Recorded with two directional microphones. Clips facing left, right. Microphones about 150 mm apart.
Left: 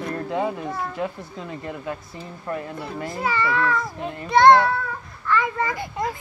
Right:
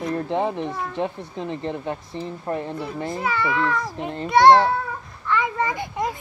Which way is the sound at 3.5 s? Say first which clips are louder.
Even; 15° right (ahead or behind).